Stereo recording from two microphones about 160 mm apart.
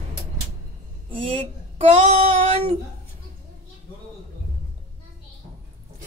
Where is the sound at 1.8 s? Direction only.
40° right (ahead or behind).